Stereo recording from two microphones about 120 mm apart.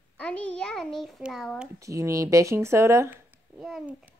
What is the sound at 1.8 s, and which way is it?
Speech, 25° right (ahead or behind).